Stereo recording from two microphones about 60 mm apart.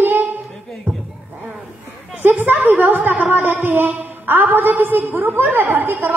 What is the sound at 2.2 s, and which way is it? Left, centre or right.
A woman's voice, right.